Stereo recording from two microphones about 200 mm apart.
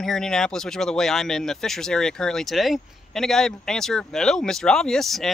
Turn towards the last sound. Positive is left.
turn(degrees=0)  # may be behind; listen again after turning